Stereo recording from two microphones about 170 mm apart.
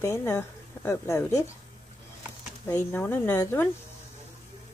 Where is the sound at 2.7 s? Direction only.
15° left (ahead or behind).